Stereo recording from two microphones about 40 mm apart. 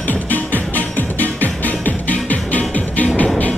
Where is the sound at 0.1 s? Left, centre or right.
Left.